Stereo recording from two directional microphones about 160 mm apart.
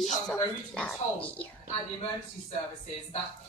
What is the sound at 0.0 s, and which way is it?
Speech, centre (ahead or behind).